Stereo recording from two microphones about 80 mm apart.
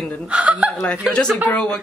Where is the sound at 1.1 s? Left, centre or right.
Centre.